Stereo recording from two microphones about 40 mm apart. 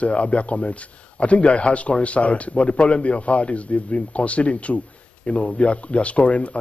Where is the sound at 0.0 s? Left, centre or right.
Left.